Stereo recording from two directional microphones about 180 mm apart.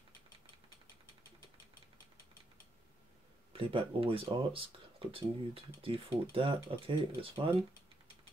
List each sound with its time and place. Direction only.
3.5 s speech: 30° right (ahead or behind)